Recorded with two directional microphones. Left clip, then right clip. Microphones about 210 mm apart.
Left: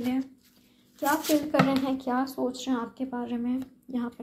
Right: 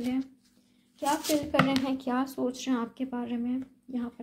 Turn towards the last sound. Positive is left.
turn(degrees=0)  # may be behind; listen again after turning